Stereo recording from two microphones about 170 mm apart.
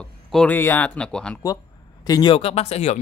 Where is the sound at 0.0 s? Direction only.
5° left (ahead or behind).